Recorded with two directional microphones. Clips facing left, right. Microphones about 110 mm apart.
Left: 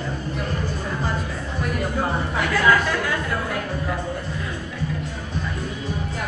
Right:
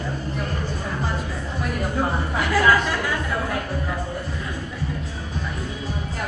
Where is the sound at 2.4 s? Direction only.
5° right (ahead or behind).